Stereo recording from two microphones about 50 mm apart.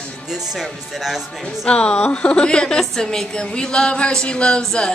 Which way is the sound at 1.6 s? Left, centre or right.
Left.